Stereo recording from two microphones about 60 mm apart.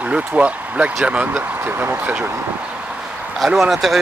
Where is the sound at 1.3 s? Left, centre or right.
Right.